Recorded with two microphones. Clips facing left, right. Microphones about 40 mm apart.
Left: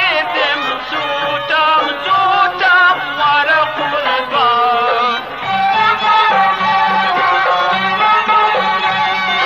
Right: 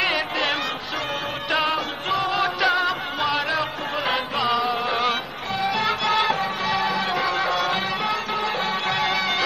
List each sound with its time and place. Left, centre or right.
0.0 s music: left
1.5 s music: left